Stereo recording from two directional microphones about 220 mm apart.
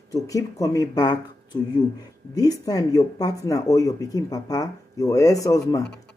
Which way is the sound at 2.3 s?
15° left (ahead or behind).